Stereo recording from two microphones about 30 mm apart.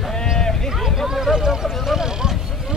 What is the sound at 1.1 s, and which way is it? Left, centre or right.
Speech, centre.